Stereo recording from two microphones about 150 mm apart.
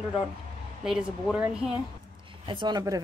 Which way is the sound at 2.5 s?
30° right (ahead or behind).